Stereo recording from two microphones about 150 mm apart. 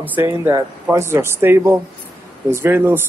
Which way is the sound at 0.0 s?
15° right (ahead or behind).